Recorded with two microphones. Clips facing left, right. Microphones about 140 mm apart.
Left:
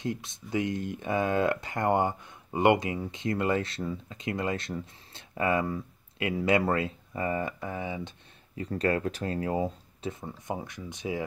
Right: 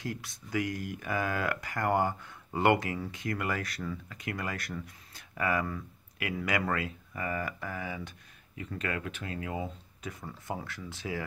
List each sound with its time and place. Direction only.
0.0 s speech: 20° left (ahead or behind)
8.5 s speech: 35° left (ahead or behind)
10.2 s speech: 20° left (ahead or behind)